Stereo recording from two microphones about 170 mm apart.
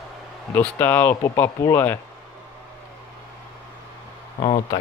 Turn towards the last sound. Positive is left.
turn(degrees=35)  # may be behind; listen again after turning